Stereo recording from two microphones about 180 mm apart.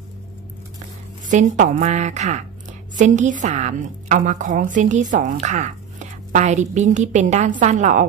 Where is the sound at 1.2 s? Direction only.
45° right (ahead or behind).